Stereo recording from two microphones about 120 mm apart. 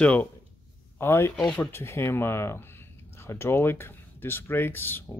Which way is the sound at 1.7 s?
20° left (ahead or behind).